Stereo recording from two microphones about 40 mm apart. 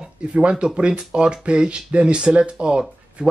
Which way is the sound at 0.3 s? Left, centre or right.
Right.